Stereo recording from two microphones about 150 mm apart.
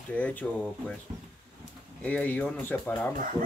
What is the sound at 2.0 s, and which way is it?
Speech, 10° left (ahead or behind).